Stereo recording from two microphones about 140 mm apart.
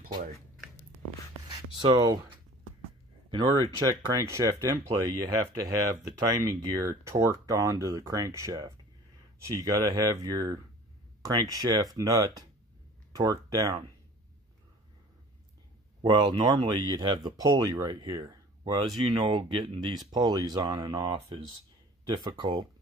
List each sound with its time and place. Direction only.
1.8 s speech: 30° right (ahead or behind)
16.0 s speech: 30° right (ahead or behind)